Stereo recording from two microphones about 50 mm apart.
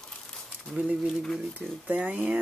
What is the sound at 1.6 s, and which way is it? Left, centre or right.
Speech, right.